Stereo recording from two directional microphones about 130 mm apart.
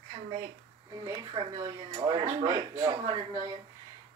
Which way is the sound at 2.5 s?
25° right (ahead or behind).